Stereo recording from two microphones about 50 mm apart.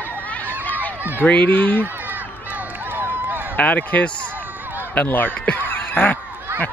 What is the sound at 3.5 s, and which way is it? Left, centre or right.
Speech, left.